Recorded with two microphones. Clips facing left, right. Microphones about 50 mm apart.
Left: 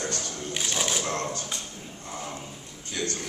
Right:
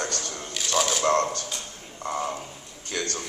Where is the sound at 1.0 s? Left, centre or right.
Right.